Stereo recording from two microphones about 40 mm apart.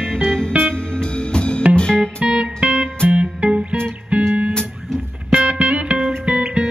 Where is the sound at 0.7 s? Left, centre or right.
Left.